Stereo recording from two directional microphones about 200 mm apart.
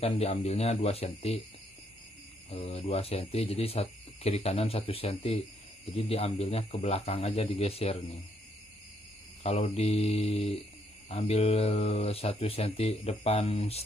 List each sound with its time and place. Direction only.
0.0 s speech: 30° left (ahead or behind)
2.5 s speech: 30° left (ahead or behind)
9.4 s speech: 30° left (ahead or behind)